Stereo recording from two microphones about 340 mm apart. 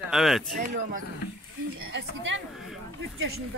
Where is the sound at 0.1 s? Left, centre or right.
Centre.